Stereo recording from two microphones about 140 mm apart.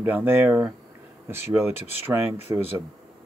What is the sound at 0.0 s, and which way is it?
Speech, 10° right (ahead or behind).